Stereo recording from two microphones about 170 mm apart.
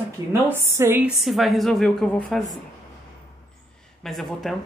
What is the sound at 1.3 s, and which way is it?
Speech, centre (ahead or behind).